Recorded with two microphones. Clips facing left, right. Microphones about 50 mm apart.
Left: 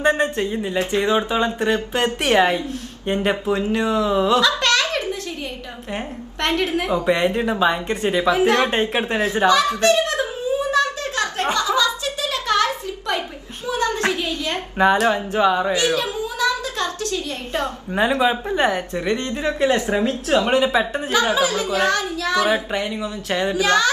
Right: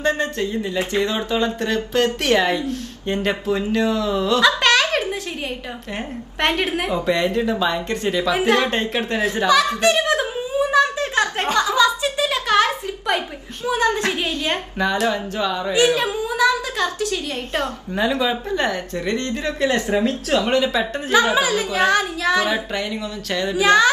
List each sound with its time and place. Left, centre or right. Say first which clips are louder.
0.0 s speech: left 2 dB; left
4.4 s giggle: right 2 dB; right
6.4 s a child's voice: even; right
7.1 s speech: even; left
9.8 s speech: even; right
10.7 s a sound: right 3 dB; right
14.8 s speech: left 5 dB; left
15.7 s a sound: right 3 dB; right
18.2 s speech: left 2 dB; left
21.1 s a child's voice: right 3 dB; right
23.5 s a child's voice: right 4 dB; right